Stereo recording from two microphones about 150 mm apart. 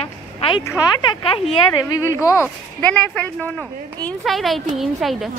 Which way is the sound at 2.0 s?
20° left (ahead or behind).